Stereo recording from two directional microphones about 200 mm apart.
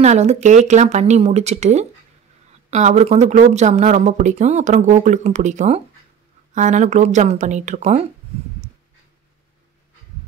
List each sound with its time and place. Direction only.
0.0 s speech: 35° right (ahead or behind)